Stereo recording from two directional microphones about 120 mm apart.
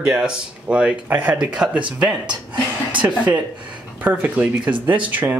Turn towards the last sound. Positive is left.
turn(degrees=-15)  # may be behind; listen again after turning